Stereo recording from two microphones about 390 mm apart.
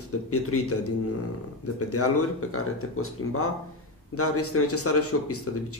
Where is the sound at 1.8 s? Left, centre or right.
Left.